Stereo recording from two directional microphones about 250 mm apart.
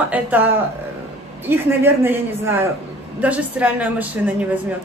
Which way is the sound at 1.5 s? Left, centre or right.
Centre.